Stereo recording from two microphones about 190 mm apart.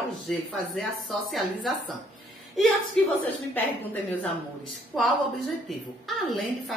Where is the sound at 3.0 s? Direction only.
Centre (ahead or behind).